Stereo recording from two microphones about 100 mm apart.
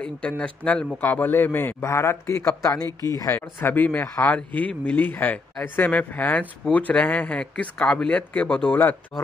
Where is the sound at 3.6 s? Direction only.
20° left (ahead or behind).